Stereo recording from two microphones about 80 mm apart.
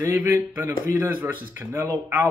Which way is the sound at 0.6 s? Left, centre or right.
Right.